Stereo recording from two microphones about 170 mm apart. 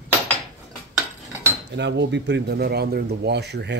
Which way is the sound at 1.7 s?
90° right.